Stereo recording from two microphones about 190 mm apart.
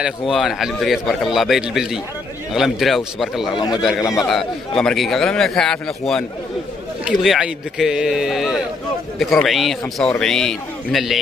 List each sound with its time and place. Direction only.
0.3 s a man's voice: centre (ahead or behind)
3.5 s a man's voice: 20° left (ahead or behind)
4.3 s a man's voice: centre (ahead or behind)